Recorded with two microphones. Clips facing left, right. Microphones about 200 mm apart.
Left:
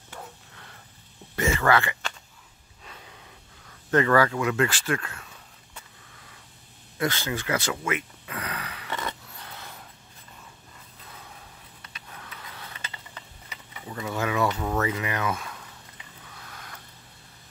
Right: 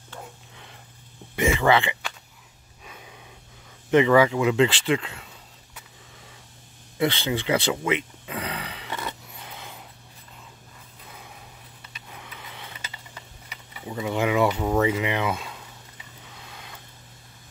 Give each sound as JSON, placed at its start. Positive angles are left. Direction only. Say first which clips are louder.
{"t": 1.3, "sound": "speech", "louder": "right 3 dB", "side_deg": -15}
{"t": 2.8, "sound": "breathing", "louder": "right 2 dB", "side_deg": -15}
{"t": 3.9, "sound": "speech", "louder": "right 4 dB", "side_deg": -15}
{"t": 7.0, "sound": "speech", "louder": "right 4 dB", "side_deg": -25}
{"t": 8.9, "sound": "scissors", "louder": "left 1 dB", "side_deg": -15}
{"t": 12.1, "sound": "a sound", "louder": "right 1 dB", "side_deg": -10}